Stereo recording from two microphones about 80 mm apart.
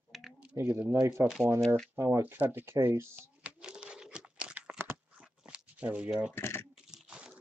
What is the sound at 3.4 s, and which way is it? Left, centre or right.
Crumpling, centre.